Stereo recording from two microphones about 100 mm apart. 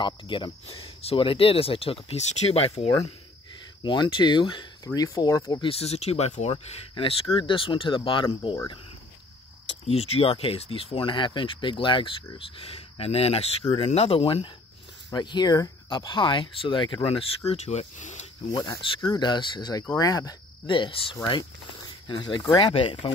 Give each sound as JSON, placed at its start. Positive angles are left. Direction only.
{"t": 0.0, "sound": "speech", "side_deg": 55}
{"t": 3.8, "sound": "speech", "side_deg": 50}
{"t": 4.8, "sound": "speech", "side_deg": 35}
{"t": 5.6, "sound": "speech", "side_deg": 75}
{"t": 7.3, "sound": "speech", "side_deg": 60}
{"t": 9.8, "sound": "speech", "side_deg": 85}
{"t": 15.1, "sound": "speech", "side_deg": 45}
{"t": 15.9, "sound": "speech", "side_deg": 50}
{"t": 17.5, "sound": "speech", "side_deg": 90}
{"t": 18.5, "sound": "speech", "side_deg": 40}
{"t": 20.6, "sound": "speech", "side_deg": 55}